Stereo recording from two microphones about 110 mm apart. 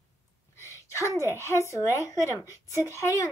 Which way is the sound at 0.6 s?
25° left (ahead or behind).